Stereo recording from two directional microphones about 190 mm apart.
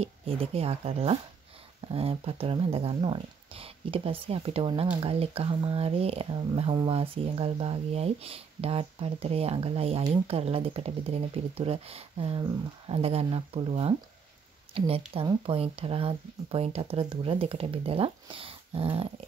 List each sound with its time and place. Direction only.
0.0 s speech: 30° right (ahead or behind)